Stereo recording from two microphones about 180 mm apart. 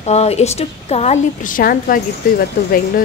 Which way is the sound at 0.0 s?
35° left (ahead or behind).